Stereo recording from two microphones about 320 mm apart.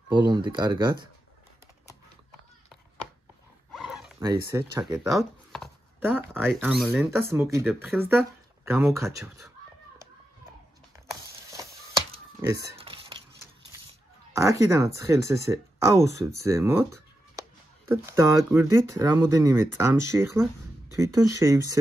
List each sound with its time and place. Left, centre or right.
0.1 s speech: centre
3.7 s zipper: centre
4.6 s speech: centre
5.1 s speech: centre
12.7 s a sound: centre
14.3 s speech: centre